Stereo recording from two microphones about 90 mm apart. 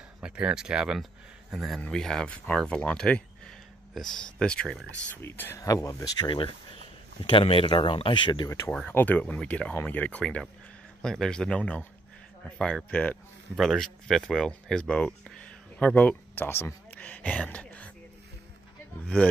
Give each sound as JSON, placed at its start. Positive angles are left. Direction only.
{"t": 0.2, "sound": "speech", "side_deg": -10}
{"t": 1.8, "sound": "speech", "side_deg": 5}
{"t": 5.0, "sound": "speech", "side_deg": 20}
{"t": 5.6, "sound": "speech", "side_deg": 40}
{"t": 6.2, "sound": "speech", "side_deg": 75}
{"t": 8.8, "sound": "speech", "side_deg": 20}
{"t": 13.6, "sound": "speech", "side_deg": 5}